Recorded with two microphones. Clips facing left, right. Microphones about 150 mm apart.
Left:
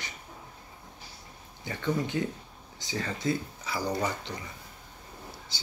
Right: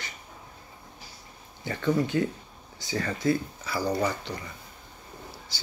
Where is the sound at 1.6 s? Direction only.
15° left (ahead or behind).